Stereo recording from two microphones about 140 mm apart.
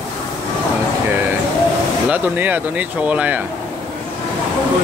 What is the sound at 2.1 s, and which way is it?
Speech, 10° right (ahead or behind).